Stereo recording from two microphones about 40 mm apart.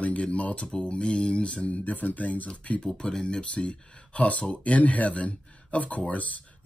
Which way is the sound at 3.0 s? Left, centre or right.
Left.